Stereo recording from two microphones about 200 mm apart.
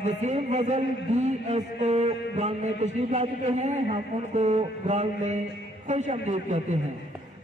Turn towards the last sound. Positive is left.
turn(degrees=-35)  # may be behind; listen again after turning